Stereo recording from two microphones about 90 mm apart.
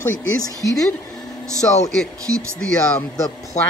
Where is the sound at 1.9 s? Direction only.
10° left (ahead or behind).